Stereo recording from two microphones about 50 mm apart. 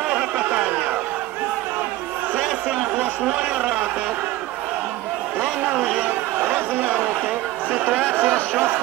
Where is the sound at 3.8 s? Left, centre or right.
Right.